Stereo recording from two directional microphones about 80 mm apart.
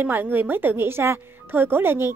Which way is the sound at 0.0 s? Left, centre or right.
Right.